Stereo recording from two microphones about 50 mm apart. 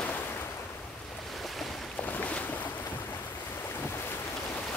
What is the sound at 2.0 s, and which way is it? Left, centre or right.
Boat, left.